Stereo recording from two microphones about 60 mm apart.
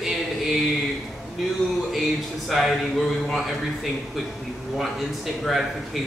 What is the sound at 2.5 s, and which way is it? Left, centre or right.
A man's voice, centre.